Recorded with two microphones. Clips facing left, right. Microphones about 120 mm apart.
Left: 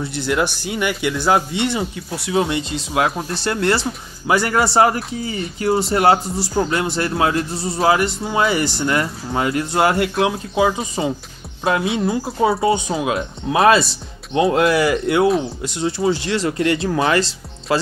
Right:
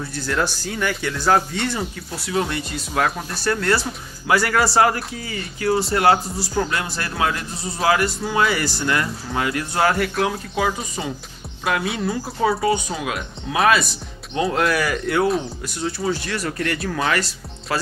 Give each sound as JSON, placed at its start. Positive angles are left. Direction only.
{"t": 0.0, "sound": "a man's voice", "side_deg": 20}